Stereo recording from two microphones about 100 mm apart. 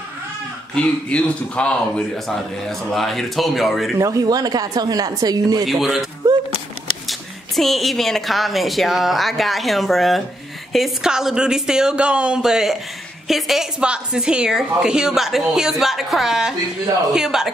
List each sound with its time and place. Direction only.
0.7 s a woman's voice: 10° left (ahead or behind)
4.0 s speech: 35° right (ahead or behind)
5.7 s a woman's voice: centre (ahead or behind)
7.1 s a woman's voice: centre (ahead or behind)